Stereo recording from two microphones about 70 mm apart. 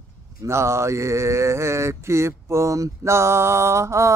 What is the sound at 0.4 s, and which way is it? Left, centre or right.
Mantra, right.